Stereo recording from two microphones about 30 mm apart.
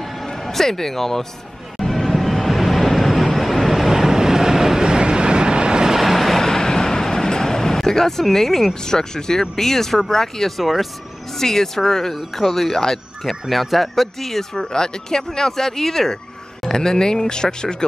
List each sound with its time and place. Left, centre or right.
0.5 s speech: centre
1.8 s vehicle: centre
4.8 s vehicle: right
5.9 s vehicle: centre
6.4 s speech: centre
10.6 s speech: centre
11.3 s speech: centre
13.5 s speech: centre
14.5 s speech: left